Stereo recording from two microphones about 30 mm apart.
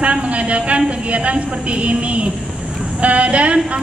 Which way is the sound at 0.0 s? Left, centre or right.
Right.